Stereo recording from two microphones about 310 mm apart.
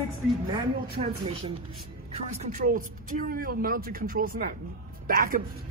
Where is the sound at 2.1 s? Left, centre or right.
Right.